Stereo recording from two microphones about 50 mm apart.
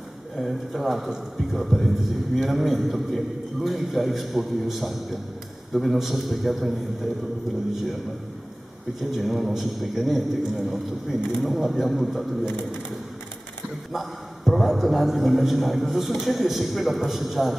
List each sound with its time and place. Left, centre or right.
0.4 s a man's voice: centre
9.1 s a man's voice: centre
13.9 s a man's voice: centre